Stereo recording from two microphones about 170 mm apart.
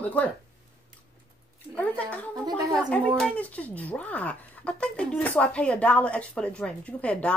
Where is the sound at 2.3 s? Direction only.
25° right (ahead or behind).